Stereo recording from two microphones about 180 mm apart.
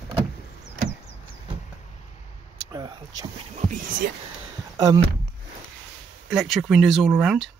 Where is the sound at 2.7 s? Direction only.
20° right (ahead or behind).